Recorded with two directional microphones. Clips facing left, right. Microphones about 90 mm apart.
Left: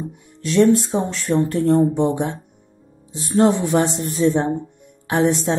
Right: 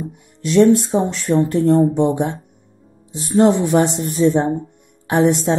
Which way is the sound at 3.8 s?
35° right (ahead or behind).